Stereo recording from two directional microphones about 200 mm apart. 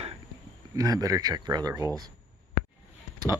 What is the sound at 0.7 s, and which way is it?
Speech, 15° right (ahead or behind).